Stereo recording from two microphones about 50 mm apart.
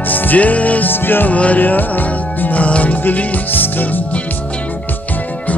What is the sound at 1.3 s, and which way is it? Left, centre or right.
Music, left.